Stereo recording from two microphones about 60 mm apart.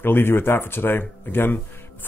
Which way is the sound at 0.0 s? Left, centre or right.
Left.